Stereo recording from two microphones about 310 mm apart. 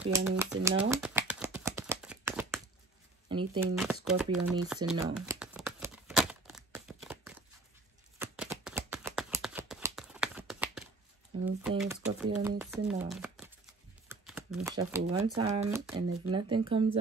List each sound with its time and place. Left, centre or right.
0.1 s speech: centre
0.7 s shuffling cards: centre
3.3 s speech: centre
3.7 s speech: centre
4.8 s crumpling: centre
8.2 s a sound: centre
11.3 s a sound: centre
11.8 s shuffling cards: centre
14.7 s speech: centre